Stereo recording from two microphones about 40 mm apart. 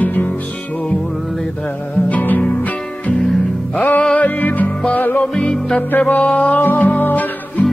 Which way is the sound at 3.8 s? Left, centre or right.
Left.